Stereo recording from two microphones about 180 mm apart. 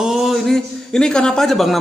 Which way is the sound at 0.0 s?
Centre (ahead or behind).